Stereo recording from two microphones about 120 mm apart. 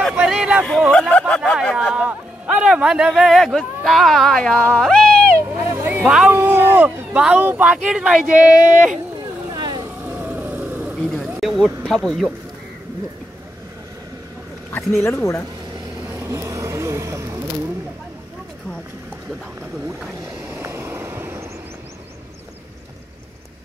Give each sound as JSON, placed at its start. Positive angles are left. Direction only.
{"t": 0.1, "sound": "a sound", "side_deg": -10}
{"t": 0.9, "sound": "speech", "side_deg": 5}
{"t": 5.5, "sound": "speech", "side_deg": -15}
{"t": 9.5, "sound": "vehicle", "side_deg": -35}
{"t": 10.0, "sound": "vehicle", "side_deg": -15}
{"t": 11.4, "sound": "speech", "side_deg": 0}
{"t": 14.7, "sound": "speech", "side_deg": 20}
{"t": 16.0, "sound": "vehicle", "side_deg": -20}
{"t": 20.2, "sound": "vehicle", "side_deg": -20}